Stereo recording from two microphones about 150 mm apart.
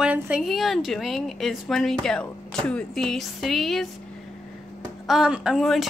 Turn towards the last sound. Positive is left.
turn(degrees=0)  # may be behind; listen again after turning